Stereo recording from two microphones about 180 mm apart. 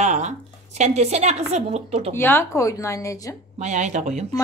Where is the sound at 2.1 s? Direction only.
10° left (ahead or behind).